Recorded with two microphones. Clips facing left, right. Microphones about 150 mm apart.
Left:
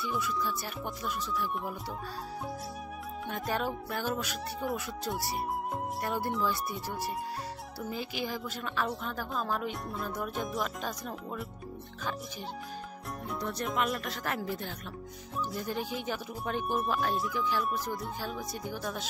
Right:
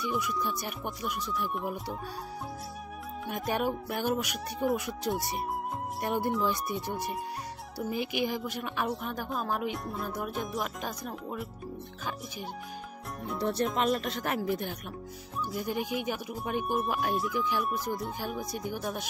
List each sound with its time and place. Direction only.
0.2 s speech: 15° right (ahead or behind)
3.3 s speech: 15° right (ahead or behind)
10.1 s music: 10° right (ahead or behind)
10.8 s speech: 10° right (ahead or behind)
13.4 s speech: 30° right (ahead or behind); by 16.7 s 10° right (ahead or behind)
16.7 s music: centre (ahead or behind)
17.7 s speech: 10° right (ahead or behind)